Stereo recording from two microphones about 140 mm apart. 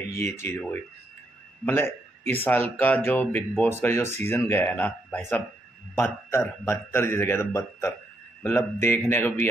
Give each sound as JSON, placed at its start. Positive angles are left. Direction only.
{"t": 0.1, "sound": "a man's voice", "side_deg": 20}